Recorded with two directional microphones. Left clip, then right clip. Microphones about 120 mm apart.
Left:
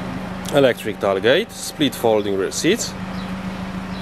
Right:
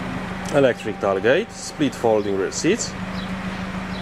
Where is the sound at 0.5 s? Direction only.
20° left (ahead or behind).